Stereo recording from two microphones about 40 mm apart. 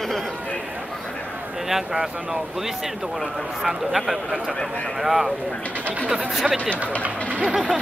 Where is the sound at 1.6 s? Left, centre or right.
Centre.